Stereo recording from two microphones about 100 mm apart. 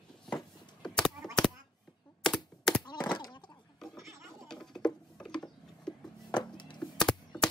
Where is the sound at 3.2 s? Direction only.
45° left (ahead or behind).